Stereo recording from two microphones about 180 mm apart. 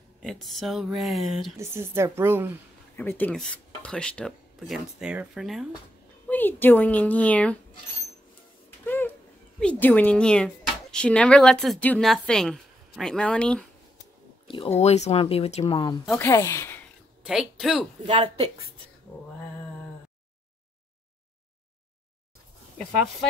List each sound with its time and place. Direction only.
0.2 s speech: centre (ahead or behind)
1.6 s a woman's voice: 15° right (ahead or behind)
3.0 s speech: 10° left (ahead or behind)
6.2 s a woman's voice: 10° left (ahead or behind)
8.8 s a sound: 10° left (ahead or behind)
9.6 s speech: 10° left (ahead or behind)
14.5 s speech: 35° left (ahead or behind)
15.7 s a woman's voice: 25° left (ahead or behind)
17.3 s speech: centre (ahead or behind)
18.0 s speech: 35° right (ahead or behind)